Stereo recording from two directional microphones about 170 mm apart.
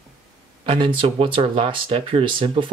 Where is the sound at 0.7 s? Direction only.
30° right (ahead or behind).